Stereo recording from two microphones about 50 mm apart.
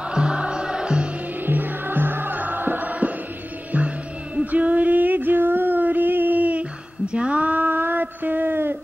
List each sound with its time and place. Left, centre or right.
0.1 s music: centre
1.4 s music: right
7.1 s a sound: right